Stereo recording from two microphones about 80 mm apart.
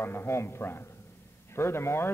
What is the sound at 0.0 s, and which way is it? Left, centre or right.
A man's voice, left.